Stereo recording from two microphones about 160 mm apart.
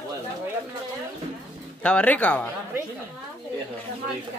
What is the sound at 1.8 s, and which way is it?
Speech, 10° left (ahead or behind).